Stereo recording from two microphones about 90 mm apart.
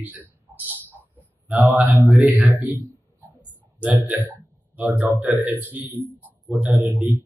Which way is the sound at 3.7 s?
20° right (ahead or behind).